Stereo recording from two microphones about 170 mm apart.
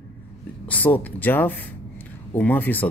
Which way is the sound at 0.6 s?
10° left (ahead or behind).